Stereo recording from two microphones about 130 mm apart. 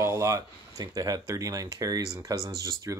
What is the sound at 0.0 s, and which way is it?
Speech, 20° right (ahead or behind).